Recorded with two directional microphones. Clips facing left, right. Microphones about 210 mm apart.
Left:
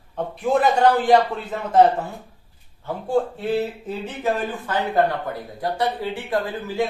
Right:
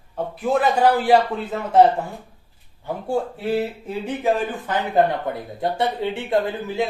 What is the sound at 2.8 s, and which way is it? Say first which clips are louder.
Speech: left 2 dB; 10° right (ahead or behind).